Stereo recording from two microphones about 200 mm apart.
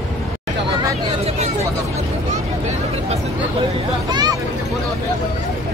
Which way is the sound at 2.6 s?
30° right (ahead or behind).